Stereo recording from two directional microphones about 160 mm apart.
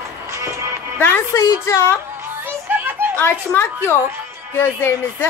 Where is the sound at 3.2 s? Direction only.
15° left (ahead or behind).